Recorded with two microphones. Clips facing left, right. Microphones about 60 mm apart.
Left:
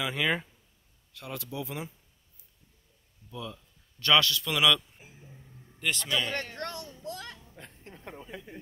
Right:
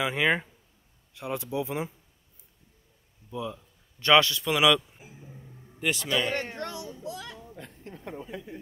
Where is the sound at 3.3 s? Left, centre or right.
Centre.